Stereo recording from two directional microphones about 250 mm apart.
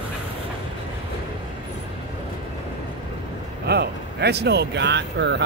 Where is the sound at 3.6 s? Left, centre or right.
Right.